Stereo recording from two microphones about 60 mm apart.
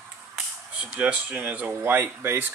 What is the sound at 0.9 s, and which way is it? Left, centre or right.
Speech, right.